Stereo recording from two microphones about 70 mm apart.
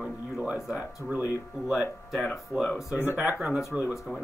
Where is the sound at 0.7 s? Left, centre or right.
Right.